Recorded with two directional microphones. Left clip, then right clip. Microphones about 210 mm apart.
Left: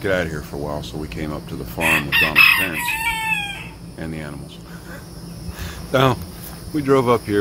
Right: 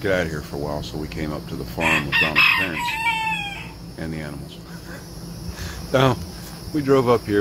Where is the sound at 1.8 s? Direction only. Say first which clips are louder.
Left 2 dB; 45° left (ahead or behind).